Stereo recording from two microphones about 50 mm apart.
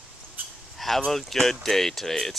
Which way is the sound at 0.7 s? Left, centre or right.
Centre.